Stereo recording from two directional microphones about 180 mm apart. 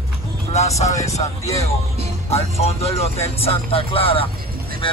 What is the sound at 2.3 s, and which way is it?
Speech, 35° left (ahead or behind).